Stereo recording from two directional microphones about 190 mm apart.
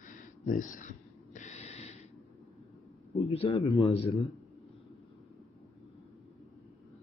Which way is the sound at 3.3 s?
30° left (ahead or behind).